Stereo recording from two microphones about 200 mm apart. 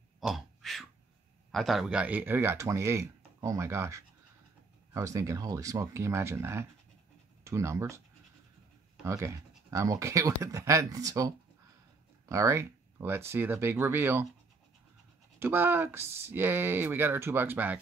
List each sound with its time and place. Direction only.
0.2 s throat clearing: centre (ahead or behind)
1.5 s speech: centre (ahead or behind)
9.0 s speech: 15° right (ahead or behind)
15.3 s speech: 10° right (ahead or behind)